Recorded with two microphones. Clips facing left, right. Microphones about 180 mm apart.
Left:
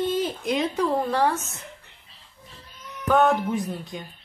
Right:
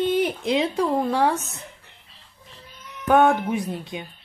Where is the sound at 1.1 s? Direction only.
10° right (ahead or behind).